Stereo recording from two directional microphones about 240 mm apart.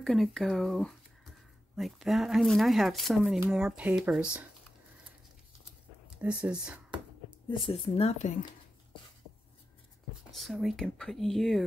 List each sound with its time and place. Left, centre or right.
0.0 s speech: centre
6.0 s speech: centre
7.4 s speech: left
10.3 s speech: centre